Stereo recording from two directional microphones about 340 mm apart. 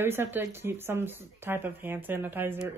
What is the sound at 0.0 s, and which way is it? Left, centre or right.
A woman's voice, centre.